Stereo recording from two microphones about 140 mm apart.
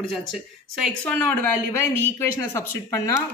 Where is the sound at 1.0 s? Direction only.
10° left (ahead or behind).